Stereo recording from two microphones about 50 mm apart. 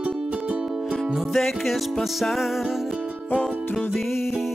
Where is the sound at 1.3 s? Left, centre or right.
Centre.